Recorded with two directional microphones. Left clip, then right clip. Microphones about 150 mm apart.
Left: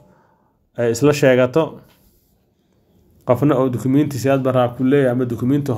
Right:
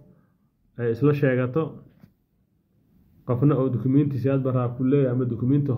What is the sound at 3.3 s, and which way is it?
Speech, 20° left (ahead or behind).